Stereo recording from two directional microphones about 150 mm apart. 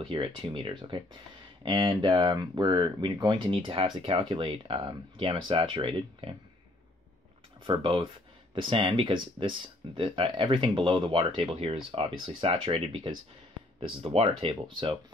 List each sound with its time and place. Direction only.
0.1 s speech: 35° right (ahead or behind)
7.8 s speech: 35° right (ahead or behind)